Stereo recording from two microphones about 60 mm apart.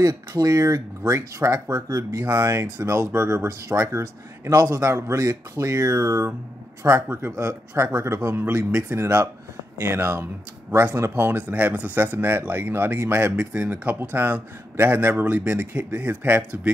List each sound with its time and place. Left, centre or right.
0.0 s speech: right
2.3 s speech: right
3.4 s speech: right
4.0 s speech: right
5.9 s speech: right
8.4 s a man's voice: right
12.0 s a man's voice: right
13.9 s a man's voice: right